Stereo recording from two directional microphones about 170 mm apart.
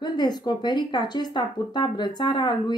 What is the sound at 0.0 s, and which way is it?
Speech, 25° left (ahead or behind).